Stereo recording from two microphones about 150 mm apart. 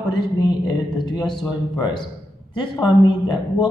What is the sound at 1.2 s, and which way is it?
Speech, 5° left (ahead or behind).